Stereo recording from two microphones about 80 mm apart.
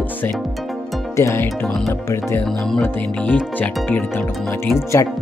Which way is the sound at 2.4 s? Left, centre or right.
Centre.